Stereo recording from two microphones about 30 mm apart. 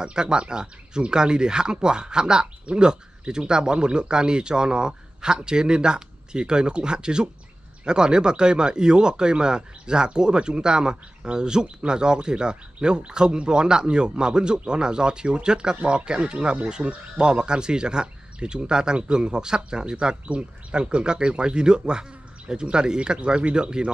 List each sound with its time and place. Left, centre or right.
0.0 s speech: right
20.2 s speech: right